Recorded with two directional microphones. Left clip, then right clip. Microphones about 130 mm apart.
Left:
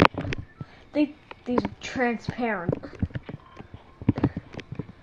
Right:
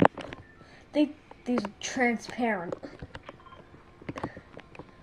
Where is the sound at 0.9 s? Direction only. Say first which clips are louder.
Left 1 dB; centre (ahead or behind).